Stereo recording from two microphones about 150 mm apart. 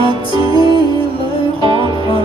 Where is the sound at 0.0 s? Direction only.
30° right (ahead or behind).